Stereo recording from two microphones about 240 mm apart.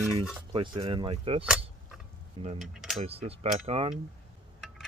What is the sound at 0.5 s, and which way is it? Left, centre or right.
Speech, right.